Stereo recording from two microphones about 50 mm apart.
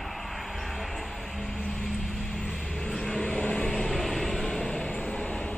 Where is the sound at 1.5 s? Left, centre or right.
Centre.